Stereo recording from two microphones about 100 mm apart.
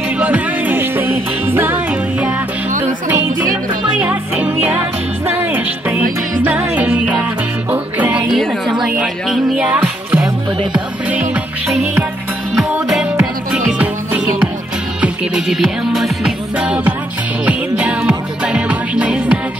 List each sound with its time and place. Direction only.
0.2 s music: 15° right (ahead or behind)
3.1 s music: 15° right (ahead or behind)
8.3 s music: centre (ahead or behind)
12.9 s music: 10° right (ahead or behind)
16.5 s music: 10° right (ahead or behind)